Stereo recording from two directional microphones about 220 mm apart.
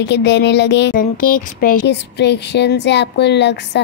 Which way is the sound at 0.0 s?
50° left (ahead or behind).